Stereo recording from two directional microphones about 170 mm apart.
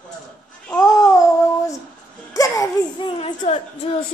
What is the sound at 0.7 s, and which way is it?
Babbling, 20° left (ahead or behind).